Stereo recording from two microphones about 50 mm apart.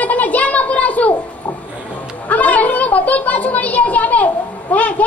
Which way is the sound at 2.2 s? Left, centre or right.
Left.